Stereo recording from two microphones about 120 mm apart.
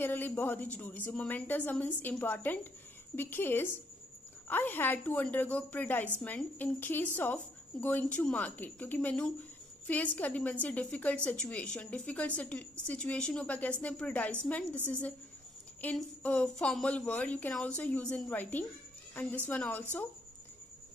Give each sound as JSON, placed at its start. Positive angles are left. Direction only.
{"t": 0.0, "sound": "a woman's voice", "side_deg": 15}